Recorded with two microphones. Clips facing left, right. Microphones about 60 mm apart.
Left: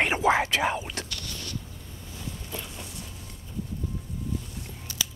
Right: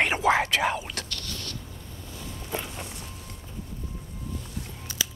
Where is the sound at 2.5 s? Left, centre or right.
Right.